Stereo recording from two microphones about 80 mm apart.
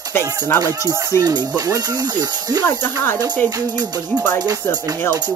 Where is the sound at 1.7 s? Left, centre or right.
Right.